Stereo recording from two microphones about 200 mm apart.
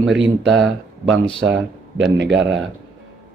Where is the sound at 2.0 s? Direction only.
60° right (ahead or behind).